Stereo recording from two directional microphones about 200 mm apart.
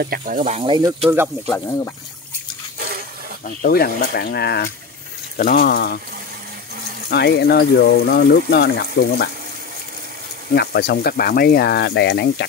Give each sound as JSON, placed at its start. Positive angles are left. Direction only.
{"t": 0.0, "sound": "speech", "side_deg": -45}
{"t": 0.6, "sound": "speech", "side_deg": -20}
{"t": 1.4, "sound": "speech", "side_deg": 10}
{"t": 3.4, "sound": "speech", "side_deg": 50}
{"t": 7.1, "sound": "speech", "side_deg": 55}
{"t": 10.5, "sound": "speech", "side_deg": 55}